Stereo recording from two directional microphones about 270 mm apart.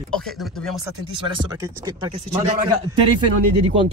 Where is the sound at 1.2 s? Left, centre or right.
Centre.